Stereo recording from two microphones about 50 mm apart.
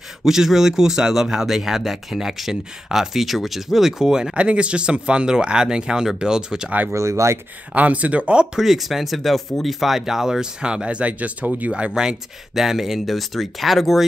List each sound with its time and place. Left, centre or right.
0.2 s speech: centre
6.9 s speech: right
7.7 s speech: right
8.5 s speech: centre; by 11.9 s right
11.9 s speech: centre